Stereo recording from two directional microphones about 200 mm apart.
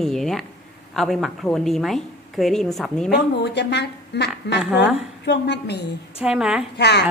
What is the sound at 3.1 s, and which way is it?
A woman's voice, 60° left (ahead or behind).